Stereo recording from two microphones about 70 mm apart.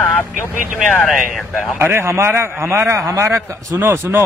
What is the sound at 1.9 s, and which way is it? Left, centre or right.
A man's voice, right.